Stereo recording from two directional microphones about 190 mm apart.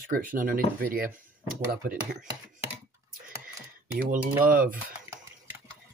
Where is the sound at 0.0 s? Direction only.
45° right (ahead or behind).